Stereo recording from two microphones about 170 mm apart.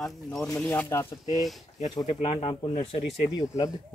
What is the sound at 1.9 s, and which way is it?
Speech, 30° left (ahead or behind).